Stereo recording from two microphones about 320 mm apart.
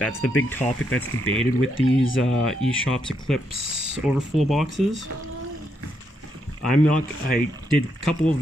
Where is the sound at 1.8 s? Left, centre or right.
Left.